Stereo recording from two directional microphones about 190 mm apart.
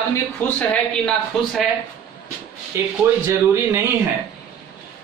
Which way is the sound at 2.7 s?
15° right (ahead or behind).